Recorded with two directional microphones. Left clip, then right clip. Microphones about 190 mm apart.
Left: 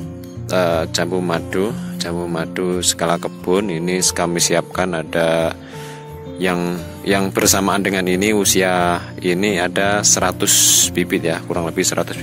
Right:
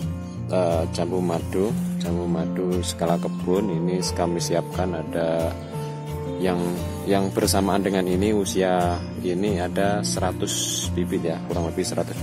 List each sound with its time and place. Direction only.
0.5 s speech: 15° left (ahead or behind)